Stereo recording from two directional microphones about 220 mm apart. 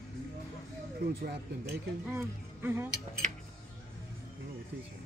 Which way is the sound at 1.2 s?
45° right (ahead or behind).